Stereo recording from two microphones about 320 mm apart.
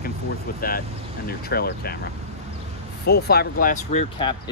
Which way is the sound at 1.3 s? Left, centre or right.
Left.